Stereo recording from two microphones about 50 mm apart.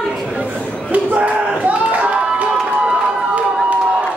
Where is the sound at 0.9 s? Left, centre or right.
Right.